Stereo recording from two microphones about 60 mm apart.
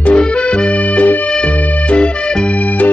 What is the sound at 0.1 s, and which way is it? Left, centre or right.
Music, centre.